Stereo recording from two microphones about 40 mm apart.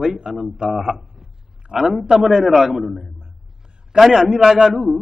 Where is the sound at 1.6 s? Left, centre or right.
Right.